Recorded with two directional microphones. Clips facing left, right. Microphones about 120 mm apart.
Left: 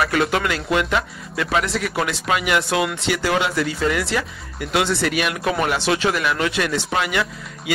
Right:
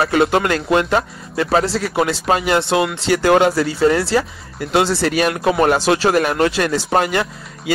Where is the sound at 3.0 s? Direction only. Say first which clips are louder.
Right 7 dB; 45° right (ahead or behind).